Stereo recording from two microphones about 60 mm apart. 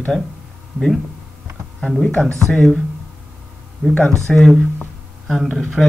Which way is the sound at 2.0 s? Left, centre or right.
Centre.